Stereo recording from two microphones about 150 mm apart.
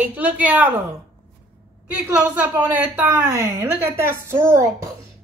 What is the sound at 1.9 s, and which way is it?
Speech, 15° right (ahead or behind).